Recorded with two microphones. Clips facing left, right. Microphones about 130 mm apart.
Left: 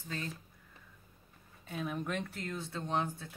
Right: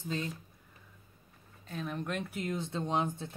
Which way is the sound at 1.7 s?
5° left (ahead or behind).